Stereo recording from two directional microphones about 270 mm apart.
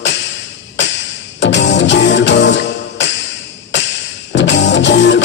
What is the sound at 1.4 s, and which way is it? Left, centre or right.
Music, left.